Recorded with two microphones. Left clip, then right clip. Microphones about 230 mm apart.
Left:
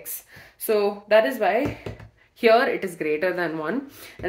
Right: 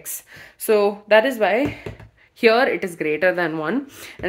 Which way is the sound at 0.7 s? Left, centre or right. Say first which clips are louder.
Right 4 dB; right.